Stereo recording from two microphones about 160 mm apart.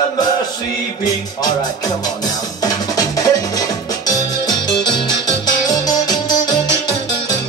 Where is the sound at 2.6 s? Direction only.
20° left (ahead or behind).